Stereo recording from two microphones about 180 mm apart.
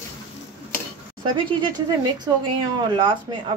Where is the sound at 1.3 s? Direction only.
25° right (ahead or behind).